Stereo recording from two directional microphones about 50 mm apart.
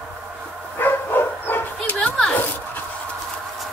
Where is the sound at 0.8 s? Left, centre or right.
Left.